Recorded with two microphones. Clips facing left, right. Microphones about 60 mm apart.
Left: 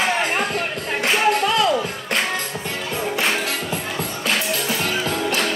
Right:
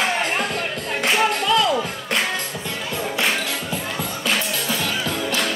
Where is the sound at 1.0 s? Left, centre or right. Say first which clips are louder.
Left 2 dB; left.